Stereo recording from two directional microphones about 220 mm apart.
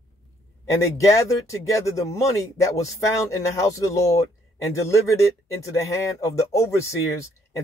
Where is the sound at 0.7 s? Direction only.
15° left (ahead or behind).